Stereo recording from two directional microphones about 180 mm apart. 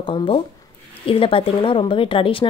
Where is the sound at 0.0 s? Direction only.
30° left (ahead or behind).